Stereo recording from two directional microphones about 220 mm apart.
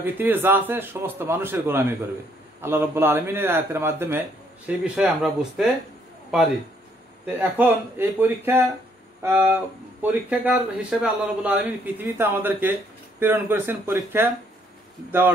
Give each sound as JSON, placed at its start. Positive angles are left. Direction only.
{"t": 0.0, "sound": "a man's voice", "side_deg": -10}
{"t": 7.3, "sound": "a man's voice", "side_deg": -10}